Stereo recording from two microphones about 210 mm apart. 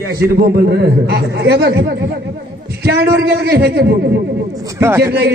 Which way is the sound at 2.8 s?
50° right (ahead or behind).